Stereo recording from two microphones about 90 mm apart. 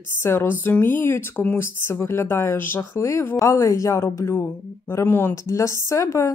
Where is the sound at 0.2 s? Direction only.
30° left (ahead or behind).